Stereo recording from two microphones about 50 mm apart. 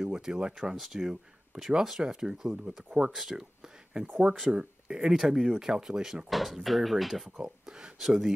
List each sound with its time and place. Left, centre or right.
0.0 s speech: centre
7.3 s speech: centre